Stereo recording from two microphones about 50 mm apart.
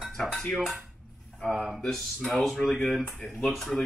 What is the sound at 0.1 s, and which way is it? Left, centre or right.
Speech, centre.